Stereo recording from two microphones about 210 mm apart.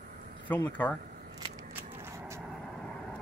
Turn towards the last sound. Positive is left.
turn(degrees=5)  # may be behind; listen again after turning